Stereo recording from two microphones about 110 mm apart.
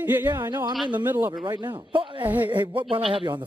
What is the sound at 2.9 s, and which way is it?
Speech, 50° right (ahead or behind).